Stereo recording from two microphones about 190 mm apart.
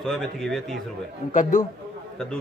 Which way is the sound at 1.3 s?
40° left (ahead or behind).